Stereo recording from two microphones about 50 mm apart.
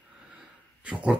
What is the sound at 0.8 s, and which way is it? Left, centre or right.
Dog, right.